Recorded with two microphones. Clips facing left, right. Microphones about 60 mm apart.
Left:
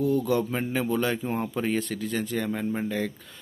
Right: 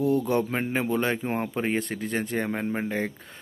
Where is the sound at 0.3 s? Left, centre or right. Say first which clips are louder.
Even; right.